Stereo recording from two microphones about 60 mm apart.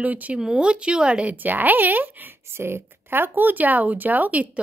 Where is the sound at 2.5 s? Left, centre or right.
Right.